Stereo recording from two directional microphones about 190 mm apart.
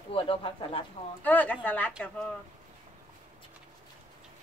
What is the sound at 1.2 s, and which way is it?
Speech, 10° left (ahead or behind).